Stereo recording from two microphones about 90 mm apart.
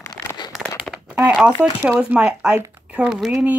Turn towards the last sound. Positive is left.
turn(degrees=-5)  # may be behind; listen again after turning